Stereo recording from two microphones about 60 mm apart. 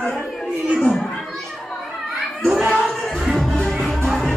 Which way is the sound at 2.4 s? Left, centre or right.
Centre.